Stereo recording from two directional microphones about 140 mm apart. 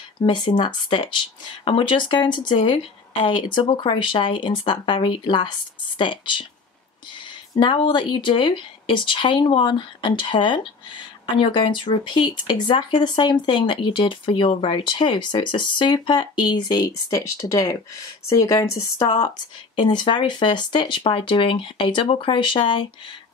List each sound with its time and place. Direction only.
0.2 s speech: 35° left (ahead or behind)
7.5 s speech: 35° left (ahead or behind)